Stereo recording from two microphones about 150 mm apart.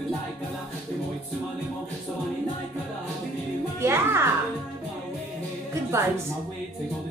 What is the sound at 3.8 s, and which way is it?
Speech, 15° right (ahead or behind).